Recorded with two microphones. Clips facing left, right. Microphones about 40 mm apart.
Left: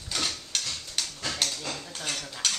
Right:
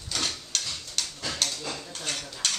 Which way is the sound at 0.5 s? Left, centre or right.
Centre.